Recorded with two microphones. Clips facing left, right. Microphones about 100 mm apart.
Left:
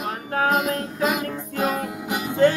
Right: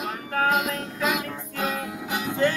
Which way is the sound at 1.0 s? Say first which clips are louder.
Left 2 dB; centre (ahead or behind).